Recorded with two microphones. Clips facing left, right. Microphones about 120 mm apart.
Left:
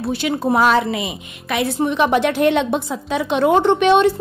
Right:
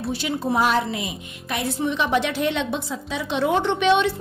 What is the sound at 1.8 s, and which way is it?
A woman's voice, 60° left (ahead or behind).